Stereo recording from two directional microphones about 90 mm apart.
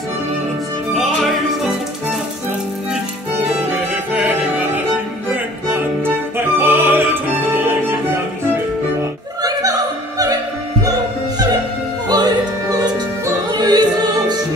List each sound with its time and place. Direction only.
0.9 s opera: centre (ahead or behind)
4.1 s music: 20° right (ahead or behind)
5.7 s music: 25° right (ahead or behind)
9.4 s opera: 40° right (ahead or behind)
12.1 s music: 50° right (ahead or behind)